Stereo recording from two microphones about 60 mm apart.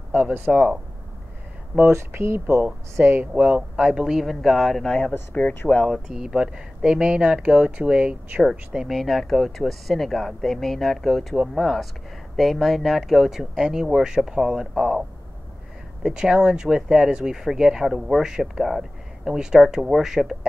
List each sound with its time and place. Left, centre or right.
0.5 s speech: centre
1.9 s speech: right
2.6 s speech: right
3.3 s speech: centre
5.3 s speech: left
6.1 s speech: centre
8.7 s speech: centre